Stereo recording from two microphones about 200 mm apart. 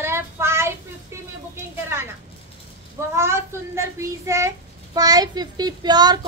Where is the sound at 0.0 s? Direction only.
10° right (ahead or behind).